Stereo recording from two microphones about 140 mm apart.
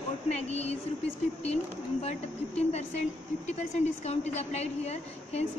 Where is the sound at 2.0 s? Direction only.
50° left (ahead or behind).